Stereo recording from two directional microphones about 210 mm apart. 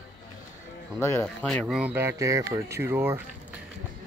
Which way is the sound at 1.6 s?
5° right (ahead or behind).